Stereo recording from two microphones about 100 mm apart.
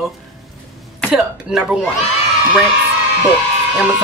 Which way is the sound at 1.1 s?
5° right (ahead or behind).